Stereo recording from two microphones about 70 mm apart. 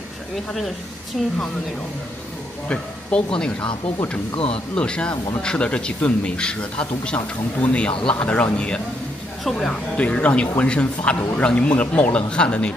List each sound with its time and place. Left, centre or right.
1.1 s speech: centre
2.7 s speech: centre
4.7 s speech: centre